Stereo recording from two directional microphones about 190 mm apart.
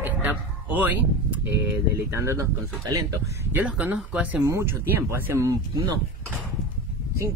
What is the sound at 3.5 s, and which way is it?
Speech, 5° right (ahead or behind).